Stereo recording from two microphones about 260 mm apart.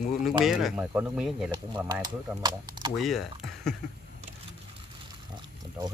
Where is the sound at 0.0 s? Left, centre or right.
Left.